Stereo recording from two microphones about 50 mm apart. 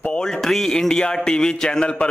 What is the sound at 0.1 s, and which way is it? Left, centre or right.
A man's voice, centre.